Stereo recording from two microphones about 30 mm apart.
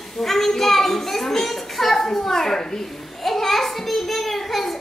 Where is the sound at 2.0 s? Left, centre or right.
Centre.